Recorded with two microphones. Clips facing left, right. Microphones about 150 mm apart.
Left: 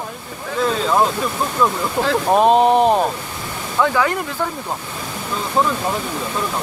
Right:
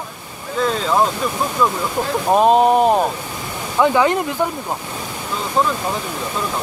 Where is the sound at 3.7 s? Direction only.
20° right (ahead or behind).